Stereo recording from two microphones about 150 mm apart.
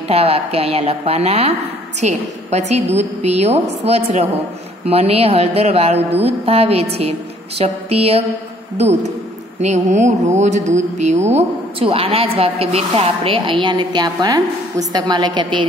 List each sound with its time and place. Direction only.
0.1 s a woman's voice: 40° right (ahead or behind)
9.8 s a woman's voice: 50° right (ahead or behind); by 15.6 s 30° right (ahead or behind)